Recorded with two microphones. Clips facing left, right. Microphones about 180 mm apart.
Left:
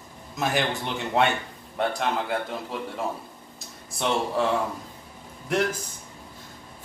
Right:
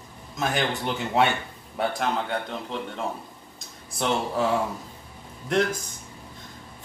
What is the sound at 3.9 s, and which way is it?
Speech, centre (ahead or behind).